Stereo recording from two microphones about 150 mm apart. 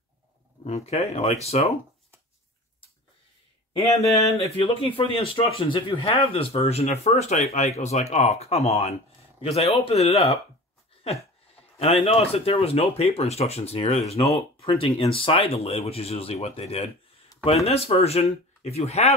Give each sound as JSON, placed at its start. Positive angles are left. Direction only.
{"t": 0.7, "sound": "speech", "side_deg": 45}
{"t": 4.6, "sound": "speech", "side_deg": 35}
{"t": 11.8, "sound": "speech", "side_deg": 40}